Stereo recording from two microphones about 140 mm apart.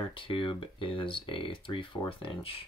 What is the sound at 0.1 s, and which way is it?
Speech, 40° left (ahead or behind).